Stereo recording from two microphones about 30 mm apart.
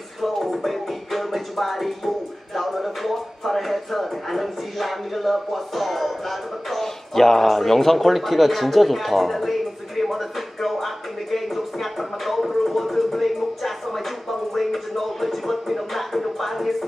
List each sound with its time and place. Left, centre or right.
0.2 s music: centre
12.6 s a sound: centre
14.5 s music: centre